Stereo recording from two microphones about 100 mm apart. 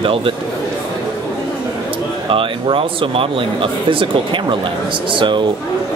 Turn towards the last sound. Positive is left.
turn(degrees=-55)  # may be behind; listen again after turning